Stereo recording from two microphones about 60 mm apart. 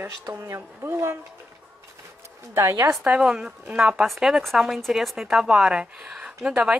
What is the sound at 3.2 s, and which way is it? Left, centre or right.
Speech, centre.